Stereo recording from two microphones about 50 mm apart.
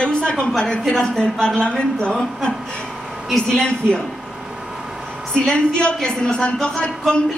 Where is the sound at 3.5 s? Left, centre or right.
Centre.